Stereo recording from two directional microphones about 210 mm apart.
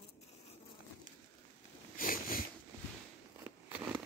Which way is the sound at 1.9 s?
40° left (ahead or behind).